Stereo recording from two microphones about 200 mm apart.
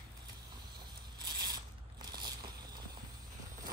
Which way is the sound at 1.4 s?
20° right (ahead or behind).